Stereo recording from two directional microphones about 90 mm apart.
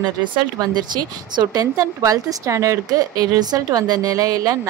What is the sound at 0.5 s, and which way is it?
Speech, 55° right (ahead or behind).